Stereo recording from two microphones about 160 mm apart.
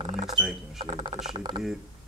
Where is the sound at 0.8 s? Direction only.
30° right (ahead or behind).